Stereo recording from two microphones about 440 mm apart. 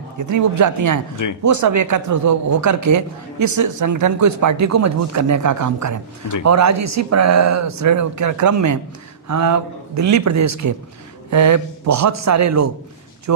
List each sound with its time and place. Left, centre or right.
0.2 s speech: right